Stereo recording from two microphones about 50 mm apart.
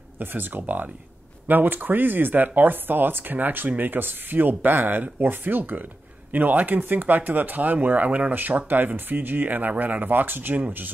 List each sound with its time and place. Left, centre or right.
0.2 s speech: right